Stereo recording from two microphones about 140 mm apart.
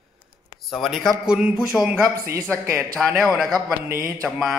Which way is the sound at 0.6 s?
Centre (ahead or behind).